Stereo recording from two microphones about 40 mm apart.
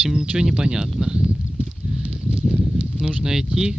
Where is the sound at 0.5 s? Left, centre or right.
Centre.